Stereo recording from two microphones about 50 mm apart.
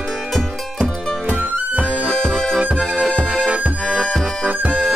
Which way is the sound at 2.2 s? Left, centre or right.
Centre.